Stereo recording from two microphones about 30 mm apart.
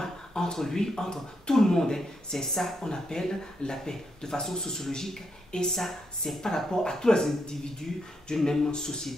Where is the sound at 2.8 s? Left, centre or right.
Left; by 6.4 s centre.